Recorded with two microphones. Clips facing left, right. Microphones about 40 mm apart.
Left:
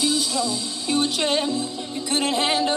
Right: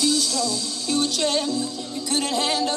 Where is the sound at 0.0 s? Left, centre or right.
Centre.